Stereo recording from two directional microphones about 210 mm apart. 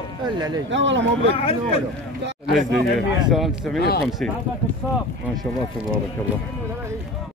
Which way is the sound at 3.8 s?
50° left (ahead or behind).